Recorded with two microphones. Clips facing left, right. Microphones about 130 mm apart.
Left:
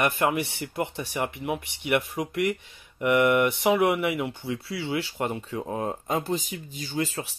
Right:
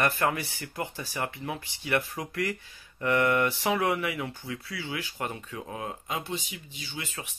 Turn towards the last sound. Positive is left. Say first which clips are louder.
# left 10 dB
turn(degrees=35)  # may be behind; listen again after turning